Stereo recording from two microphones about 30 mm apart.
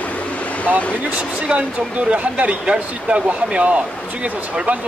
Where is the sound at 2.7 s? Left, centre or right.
Right.